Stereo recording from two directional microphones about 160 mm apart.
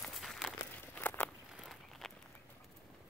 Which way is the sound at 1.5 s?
Centre (ahead or behind).